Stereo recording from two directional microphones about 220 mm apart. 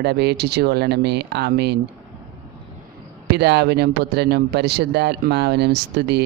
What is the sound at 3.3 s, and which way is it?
Speech, 50° right (ahead or behind).